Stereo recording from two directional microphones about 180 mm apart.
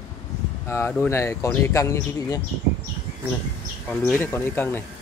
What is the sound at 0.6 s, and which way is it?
Speech, 15° left (ahead or behind).